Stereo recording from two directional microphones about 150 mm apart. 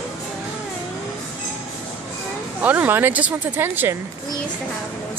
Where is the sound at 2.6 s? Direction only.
10° right (ahead or behind).